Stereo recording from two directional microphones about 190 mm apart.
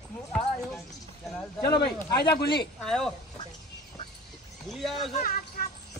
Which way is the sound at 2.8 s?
5° left (ahead or behind).